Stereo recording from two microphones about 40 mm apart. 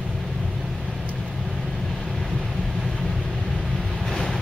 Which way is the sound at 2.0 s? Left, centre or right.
Centre.